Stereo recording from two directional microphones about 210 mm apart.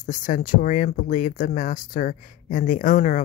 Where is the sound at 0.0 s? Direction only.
40° left (ahead or behind).